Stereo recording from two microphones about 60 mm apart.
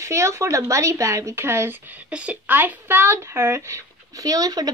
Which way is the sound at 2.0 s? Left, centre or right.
Right.